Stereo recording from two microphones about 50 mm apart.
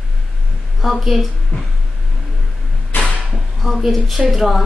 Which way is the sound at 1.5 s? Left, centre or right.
Left.